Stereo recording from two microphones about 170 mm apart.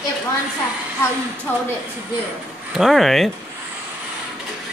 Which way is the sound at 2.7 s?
Centre (ahead or behind).